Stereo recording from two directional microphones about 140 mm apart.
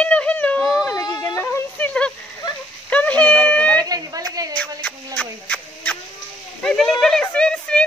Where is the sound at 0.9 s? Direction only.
25° left (ahead or behind).